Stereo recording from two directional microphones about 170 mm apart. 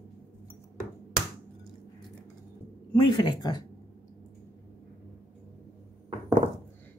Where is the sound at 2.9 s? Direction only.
25° left (ahead or behind).